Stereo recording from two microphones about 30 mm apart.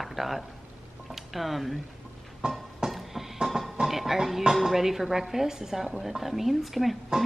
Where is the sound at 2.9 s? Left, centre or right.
Centre.